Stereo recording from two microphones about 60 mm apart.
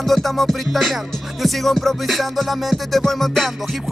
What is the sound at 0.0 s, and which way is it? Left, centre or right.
Music, centre.